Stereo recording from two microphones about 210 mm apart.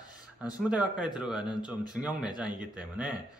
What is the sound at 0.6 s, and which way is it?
Speech, 5° right (ahead or behind).